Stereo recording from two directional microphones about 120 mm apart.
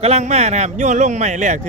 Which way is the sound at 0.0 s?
65° right (ahead or behind).